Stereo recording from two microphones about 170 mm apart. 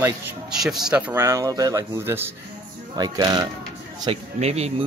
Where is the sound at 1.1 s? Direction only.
15° right (ahead or behind).